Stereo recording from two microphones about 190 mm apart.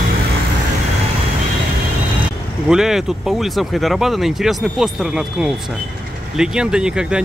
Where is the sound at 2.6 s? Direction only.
Centre (ahead or behind).